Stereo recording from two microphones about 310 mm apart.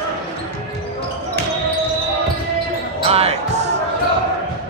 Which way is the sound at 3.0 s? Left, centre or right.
Centre.